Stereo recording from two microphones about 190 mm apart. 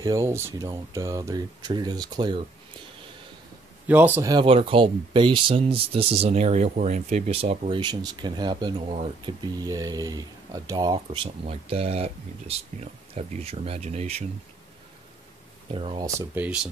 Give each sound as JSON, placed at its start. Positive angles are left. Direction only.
{"t": 0.0, "sound": "speech", "side_deg": -15}
{"t": 3.8, "sound": "speech", "side_deg": -10}
{"t": 15.7, "sound": "speech", "side_deg": -30}
{"t": 16.2, "sound": "speech", "side_deg": -10}